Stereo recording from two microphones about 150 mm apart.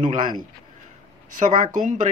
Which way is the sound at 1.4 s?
60° right (ahead or behind).